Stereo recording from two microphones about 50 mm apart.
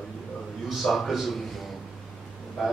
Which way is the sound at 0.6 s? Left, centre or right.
Centre.